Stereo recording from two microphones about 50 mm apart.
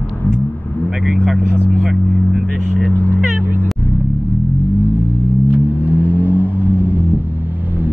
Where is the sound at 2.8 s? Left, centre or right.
Left.